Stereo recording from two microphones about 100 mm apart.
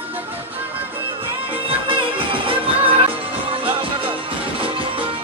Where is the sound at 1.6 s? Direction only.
65° right (ahead or behind).